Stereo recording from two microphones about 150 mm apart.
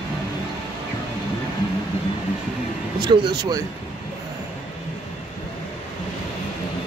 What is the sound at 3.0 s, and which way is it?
Speech, 25° right (ahead or behind).